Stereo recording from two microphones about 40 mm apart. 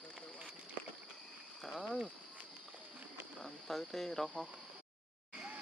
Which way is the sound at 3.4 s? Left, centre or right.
Centre.